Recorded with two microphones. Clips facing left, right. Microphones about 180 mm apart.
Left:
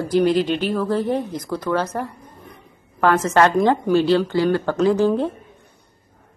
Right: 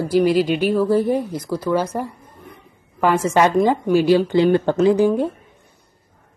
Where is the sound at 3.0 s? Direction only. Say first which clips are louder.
Even; 10° right (ahead or behind).